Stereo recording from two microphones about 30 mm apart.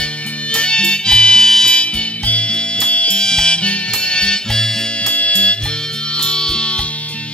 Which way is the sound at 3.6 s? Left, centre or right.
Left.